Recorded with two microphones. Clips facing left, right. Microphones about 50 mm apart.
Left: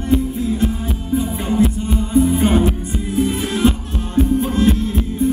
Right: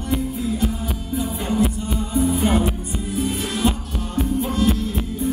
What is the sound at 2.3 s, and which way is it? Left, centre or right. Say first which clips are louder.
Music: left 4 dB; left.